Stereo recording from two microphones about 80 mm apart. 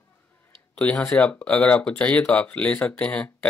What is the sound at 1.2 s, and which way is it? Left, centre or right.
Speech, centre.